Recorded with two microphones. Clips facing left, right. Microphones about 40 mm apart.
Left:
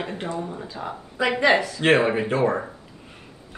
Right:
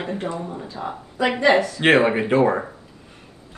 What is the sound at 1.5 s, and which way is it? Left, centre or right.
Speech, right.